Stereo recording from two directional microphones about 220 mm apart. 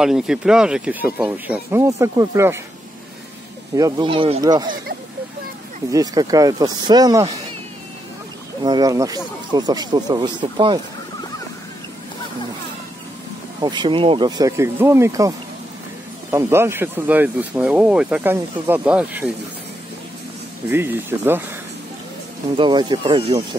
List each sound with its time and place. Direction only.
0.0 s speech: 5° right (ahead or behind)
3.7 s speech: 15° right (ahead or behind)
5.9 s speech: 15° right (ahead or behind)
8.6 s speech: 15° right (ahead or behind)
13.6 s speech: 20° right (ahead or behind)
20.6 s speech: 10° right (ahead or behind)
22.6 s speech: 20° right (ahead or behind)